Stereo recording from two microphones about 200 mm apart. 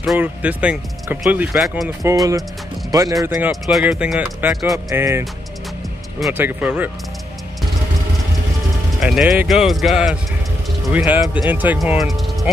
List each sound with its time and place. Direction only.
0.0 s speech: 5° right (ahead or behind)
2.9 s speech: 20° right (ahead or behind)
3.3 s speech: 5° right (ahead or behind)
4.9 s speech: 10° right (ahead or behind)
9.0 s speech: centre (ahead or behind)